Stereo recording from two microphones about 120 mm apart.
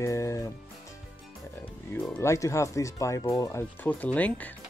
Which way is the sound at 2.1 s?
25° left (ahead or behind).